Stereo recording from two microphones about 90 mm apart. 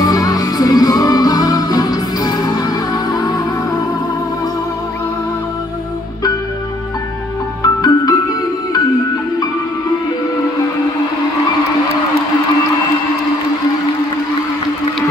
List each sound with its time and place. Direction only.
0.0 s music: 45° left (ahead or behind)
7.6 s music: 45° left (ahead or behind)